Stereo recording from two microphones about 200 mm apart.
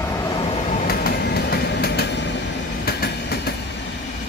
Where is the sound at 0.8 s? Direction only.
50° left (ahead or behind).